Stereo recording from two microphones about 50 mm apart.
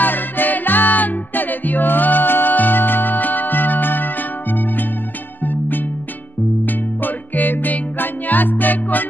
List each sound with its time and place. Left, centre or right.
0.0 s music: left